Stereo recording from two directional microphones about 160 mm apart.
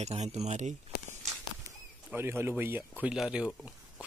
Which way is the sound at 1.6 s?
15° right (ahead or behind).